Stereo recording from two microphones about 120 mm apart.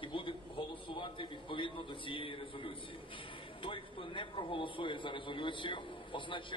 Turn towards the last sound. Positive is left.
turn(degrees=45)  # may be behind; listen again after turning